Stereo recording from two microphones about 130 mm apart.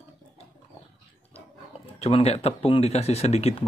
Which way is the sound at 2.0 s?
50° left (ahead or behind).